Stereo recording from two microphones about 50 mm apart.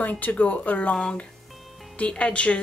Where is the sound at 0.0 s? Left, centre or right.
Left.